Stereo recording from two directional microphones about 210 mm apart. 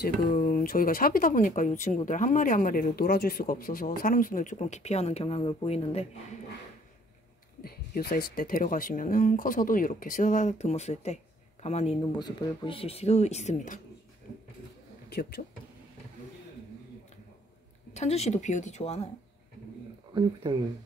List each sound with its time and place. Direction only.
0.3 s speech: 35° left (ahead or behind)
7.6 s speech: 45° left (ahead or behind)
15.0 s speech: 50° left (ahead or behind)
17.9 s speech: 30° left (ahead or behind)
20.4 s speech: 20° right (ahead or behind)